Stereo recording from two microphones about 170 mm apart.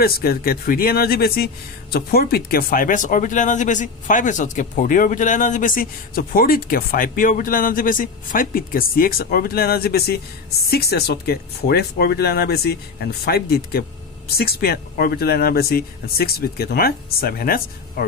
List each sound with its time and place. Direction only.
0.0 s speech: 60° left (ahead or behind)